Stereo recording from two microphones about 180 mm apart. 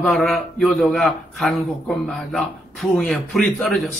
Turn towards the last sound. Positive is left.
turn(degrees=0)  # may be behind; listen again after turning